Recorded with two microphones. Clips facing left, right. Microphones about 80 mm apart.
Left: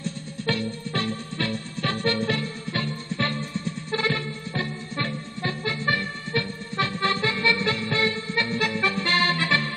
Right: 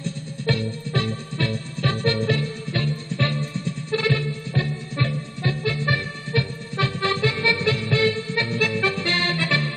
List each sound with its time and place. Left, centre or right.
0.5 s music: left